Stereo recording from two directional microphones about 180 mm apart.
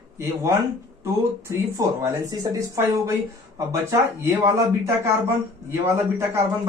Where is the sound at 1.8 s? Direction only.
20° right (ahead or behind).